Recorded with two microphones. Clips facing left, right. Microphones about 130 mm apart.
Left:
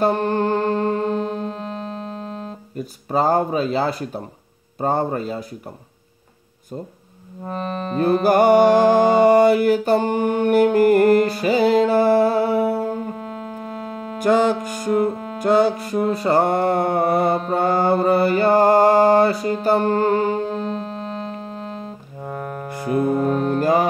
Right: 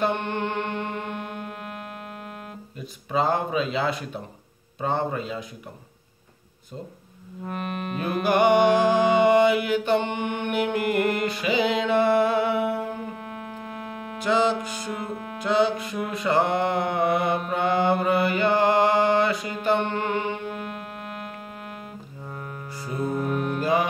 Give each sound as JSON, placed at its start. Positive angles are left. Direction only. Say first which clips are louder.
{"t": 0.0, "sound": "music", "louder": "left 7 dB", "side_deg": 35}
{"t": 2.8, "sound": "speech", "louder": "left 5 dB", "side_deg": 40}
{"t": 7.4, "sound": "music", "louder": "left 5 dB", "side_deg": 30}
{"t": 14.1, "sound": "music", "louder": "left 5 dB", "side_deg": 45}
{"t": 15.3, "sound": "mantra", "louder": "left 5 dB", "side_deg": 40}
{"t": 22.2, "sound": "music", "louder": "left 9 dB", "side_deg": 50}
{"t": 23.2, "sound": "speech", "louder": "left 7 dB", "side_deg": 35}